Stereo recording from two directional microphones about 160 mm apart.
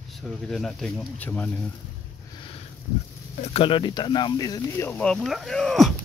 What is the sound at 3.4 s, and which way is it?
Speech, 35° left (ahead or behind).